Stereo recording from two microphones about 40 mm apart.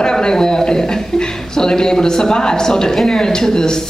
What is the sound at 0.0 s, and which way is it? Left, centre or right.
A woman's voice, centre.